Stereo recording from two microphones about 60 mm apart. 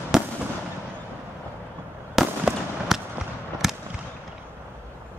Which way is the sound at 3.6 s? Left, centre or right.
Centre.